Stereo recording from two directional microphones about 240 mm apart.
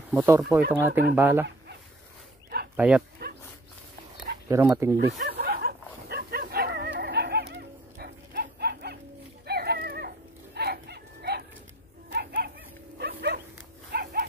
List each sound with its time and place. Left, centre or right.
0.1 s speech: centre
2.7 s speech: centre
3.2 s dog: right
4.5 s speech: centre
5.2 s bow-wow: right
9.5 s a sound: right
12.1 s bow-wow: right
13.0 s dog: right